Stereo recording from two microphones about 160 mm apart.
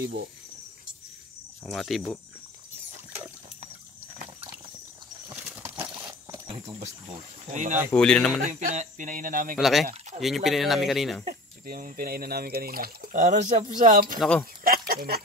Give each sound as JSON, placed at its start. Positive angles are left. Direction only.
{"t": 1.7, "sound": "speech", "side_deg": 0}
{"t": 5.3, "sound": "horse", "side_deg": -15}
{"t": 6.3, "sound": "speech", "side_deg": -35}
{"t": 7.9, "sound": "speech", "side_deg": 5}
{"t": 8.5, "sound": "speech", "side_deg": -50}
{"t": 9.6, "sound": "speech", "side_deg": 0}
{"t": 11.6, "sound": "speech", "side_deg": -65}
{"t": 14.6, "sound": "a sound", "side_deg": -70}